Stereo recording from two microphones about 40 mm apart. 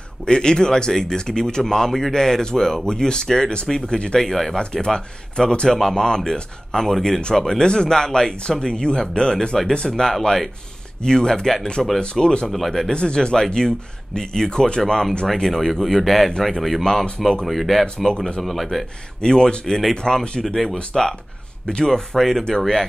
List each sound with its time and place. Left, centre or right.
0.2 s speech: left
1.9 s speech: centre
4.2 s speech: centre
11.0 s speech: centre
12.0 s speech: left
12.4 s a man's voice: centre
12.9 s a man's voice: left; by 17.8 s centre
17.8 s speech: centre
18.4 s a man's voice: centre
19.2 s speech: centre
19.6 s speech: centre
19.9 s speech: centre